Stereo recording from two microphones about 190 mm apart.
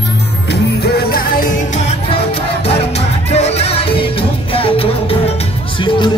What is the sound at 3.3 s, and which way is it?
Music, 35° left (ahead or behind).